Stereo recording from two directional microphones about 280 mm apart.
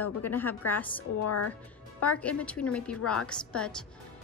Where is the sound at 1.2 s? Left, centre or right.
Left.